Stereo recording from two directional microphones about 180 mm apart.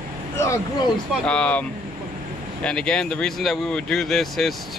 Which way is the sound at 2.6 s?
5° left (ahead or behind).